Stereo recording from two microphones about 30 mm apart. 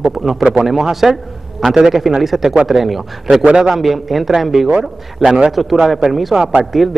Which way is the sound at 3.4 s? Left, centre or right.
Right.